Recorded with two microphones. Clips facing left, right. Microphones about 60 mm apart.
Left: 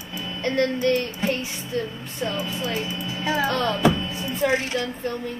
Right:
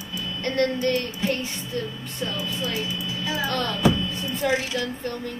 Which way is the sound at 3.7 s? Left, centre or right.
Left.